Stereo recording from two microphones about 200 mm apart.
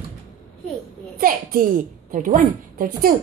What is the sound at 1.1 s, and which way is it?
A child's voice, 45° right (ahead or behind).